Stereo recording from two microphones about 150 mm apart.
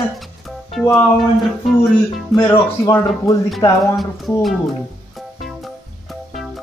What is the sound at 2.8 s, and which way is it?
Speech, 20° left (ahead or behind).